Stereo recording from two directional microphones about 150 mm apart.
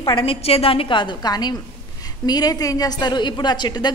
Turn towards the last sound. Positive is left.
turn(degrees=30)  # may be behind; listen again after turning